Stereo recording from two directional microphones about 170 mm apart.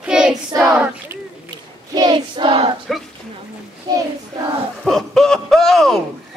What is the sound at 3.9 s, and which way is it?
Child singing, 25° right (ahead or behind).